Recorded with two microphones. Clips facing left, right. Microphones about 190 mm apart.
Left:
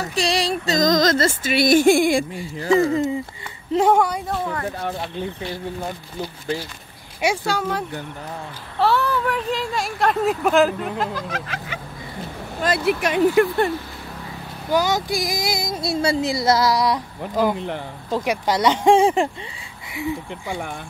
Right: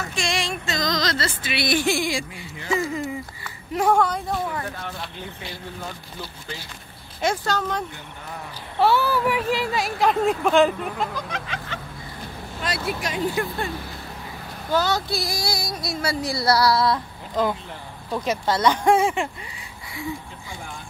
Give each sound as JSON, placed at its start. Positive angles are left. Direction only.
{"t": 0.0, "sound": "music", "side_deg": 35}
{"t": 2.5, "sound": "speech", "side_deg": 35}
{"t": 3.7, "sound": "speech", "side_deg": 25}
{"t": 4.7, "sound": "speech", "side_deg": 40}
{"t": 7.2, "sound": "speech", "side_deg": 10}
{"t": 8.7, "sound": "speech", "side_deg": 0}
{"t": 12.5, "sound": "vehicle", "side_deg": 50}
{"t": 12.8, "sound": "speech", "side_deg": 65}
{"t": 14.7, "sound": "speech", "side_deg": 15}
{"t": 18.2, "sound": "speech", "side_deg": 15}